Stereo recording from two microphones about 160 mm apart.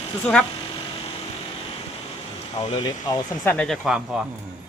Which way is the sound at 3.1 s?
25° left (ahead or behind).